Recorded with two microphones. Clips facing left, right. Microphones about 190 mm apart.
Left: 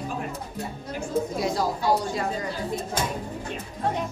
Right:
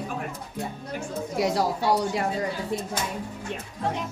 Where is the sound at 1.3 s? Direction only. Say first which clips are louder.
Right 2 dB; 70° right (ahead or behind).